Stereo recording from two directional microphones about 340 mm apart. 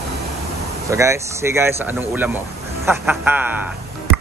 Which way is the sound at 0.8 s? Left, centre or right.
Centre.